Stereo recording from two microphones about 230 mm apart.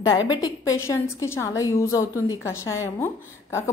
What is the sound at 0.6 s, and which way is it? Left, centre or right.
A woman's voice, centre.